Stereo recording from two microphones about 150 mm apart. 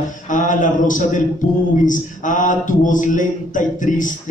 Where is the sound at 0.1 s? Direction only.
60° left (ahead or behind).